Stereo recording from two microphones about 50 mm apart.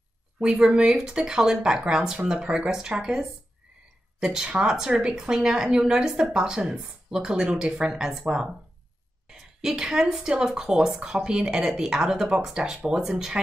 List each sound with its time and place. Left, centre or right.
0.7 s speech: centre